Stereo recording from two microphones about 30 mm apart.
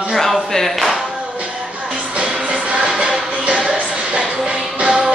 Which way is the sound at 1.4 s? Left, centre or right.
Right.